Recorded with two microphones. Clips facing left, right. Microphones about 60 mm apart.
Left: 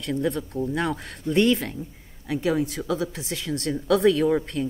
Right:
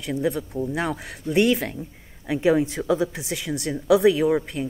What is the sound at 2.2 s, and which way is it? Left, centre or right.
Speech, right.